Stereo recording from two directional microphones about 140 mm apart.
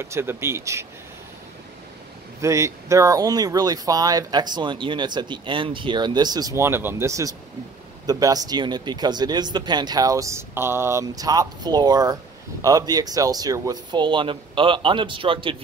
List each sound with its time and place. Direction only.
0.0 s speech: 20° right (ahead or behind)
2.4 s speech: 20° right (ahead or behind); by 15.5 s 40° right (ahead or behind)